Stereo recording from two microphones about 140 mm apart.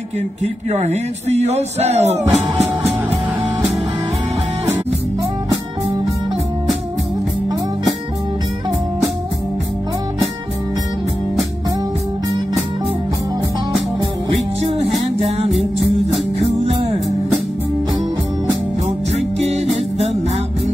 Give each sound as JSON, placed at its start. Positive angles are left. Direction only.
{"t": 0.4, "sound": "speech", "side_deg": -55}
{"t": 15.5, "sound": "music", "side_deg": 0}
{"t": 16.5, "sound": "music", "side_deg": -45}
{"t": 19.1, "sound": "music", "side_deg": -50}